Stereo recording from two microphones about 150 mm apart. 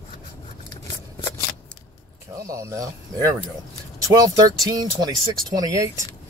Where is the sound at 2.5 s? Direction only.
20° right (ahead or behind).